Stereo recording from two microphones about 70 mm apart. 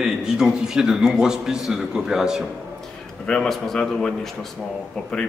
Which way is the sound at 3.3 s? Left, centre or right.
Centre.